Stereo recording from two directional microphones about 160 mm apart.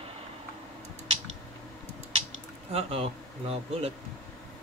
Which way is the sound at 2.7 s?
35° right (ahead or behind).